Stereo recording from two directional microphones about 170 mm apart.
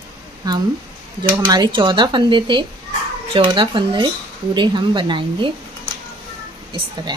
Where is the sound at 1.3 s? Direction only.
25° right (ahead or behind).